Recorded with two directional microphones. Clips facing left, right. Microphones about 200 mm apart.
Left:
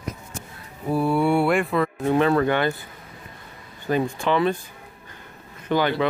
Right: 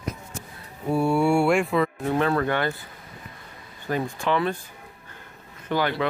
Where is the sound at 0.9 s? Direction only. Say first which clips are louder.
Even; centre (ahead or behind).